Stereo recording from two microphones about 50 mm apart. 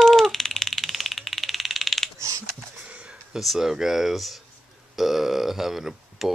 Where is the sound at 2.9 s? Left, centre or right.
Right.